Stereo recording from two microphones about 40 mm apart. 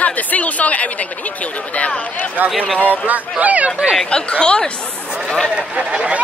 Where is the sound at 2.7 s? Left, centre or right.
Left.